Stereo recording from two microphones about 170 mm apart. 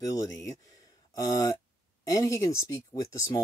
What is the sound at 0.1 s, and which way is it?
Speech, 20° left (ahead or behind).